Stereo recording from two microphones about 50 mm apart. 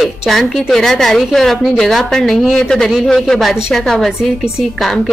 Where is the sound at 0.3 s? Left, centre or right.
Centre.